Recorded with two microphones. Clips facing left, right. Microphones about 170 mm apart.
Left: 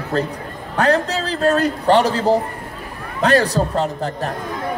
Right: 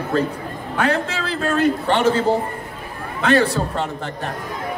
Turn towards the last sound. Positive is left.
turn(degrees=35)  # may be behind; listen again after turning